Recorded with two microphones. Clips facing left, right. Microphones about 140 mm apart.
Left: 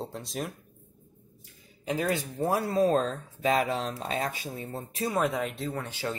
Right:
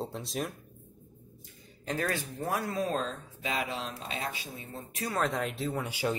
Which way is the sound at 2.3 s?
30° left (ahead or behind).